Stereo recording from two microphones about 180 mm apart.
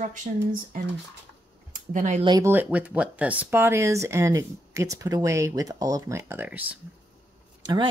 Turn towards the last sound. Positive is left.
turn(degrees=-25)  # may be behind; listen again after turning